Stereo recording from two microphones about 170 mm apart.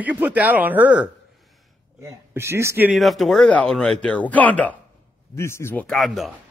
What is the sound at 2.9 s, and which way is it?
Speech, centre (ahead or behind).